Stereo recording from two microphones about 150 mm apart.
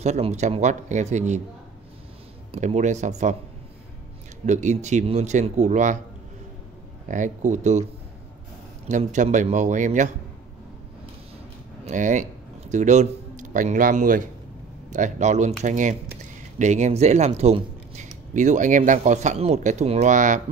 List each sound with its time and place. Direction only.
0.0 s speech: 50° right (ahead or behind)
2.5 s speech: 50° right (ahead or behind)
4.5 s speech: 50° right (ahead or behind)
7.1 s a man's voice: 55° right (ahead or behind)
8.8 s a man's voice: 55° right (ahead or behind)
11.8 s a man's voice: 55° right (ahead or behind)